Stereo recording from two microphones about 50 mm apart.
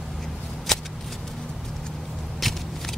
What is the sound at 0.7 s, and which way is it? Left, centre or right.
Shuffling cards, centre.